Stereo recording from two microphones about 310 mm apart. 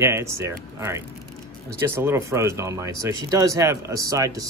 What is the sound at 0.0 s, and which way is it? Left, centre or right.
Speech, centre.